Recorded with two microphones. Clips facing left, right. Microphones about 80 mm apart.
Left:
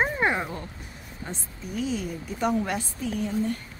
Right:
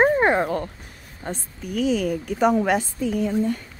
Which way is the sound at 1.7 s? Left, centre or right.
Right.